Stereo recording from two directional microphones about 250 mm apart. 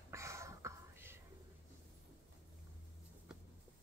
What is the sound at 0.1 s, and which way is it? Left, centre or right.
Whispering, centre.